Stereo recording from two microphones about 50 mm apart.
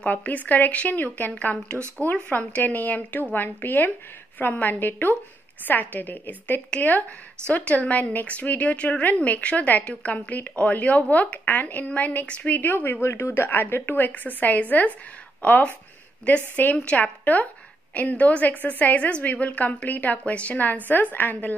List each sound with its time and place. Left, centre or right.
0.0 s a woman's voice: left
13.0 s a woman's voice: left
16.7 s a woman's voice: left